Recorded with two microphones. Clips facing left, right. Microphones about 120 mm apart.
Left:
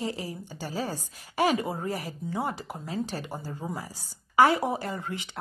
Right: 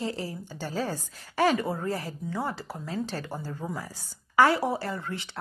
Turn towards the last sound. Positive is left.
turn(degrees=20)  # may be behind; listen again after turning